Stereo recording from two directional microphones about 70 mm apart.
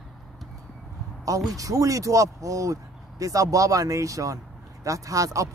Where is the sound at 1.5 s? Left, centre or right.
Right.